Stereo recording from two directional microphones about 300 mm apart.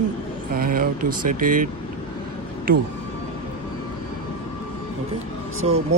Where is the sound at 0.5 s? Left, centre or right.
Right.